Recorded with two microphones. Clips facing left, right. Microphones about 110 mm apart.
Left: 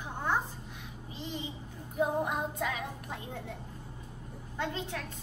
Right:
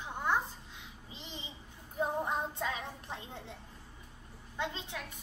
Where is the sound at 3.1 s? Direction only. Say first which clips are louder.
Left 4 dB; 25° right (ahead or behind).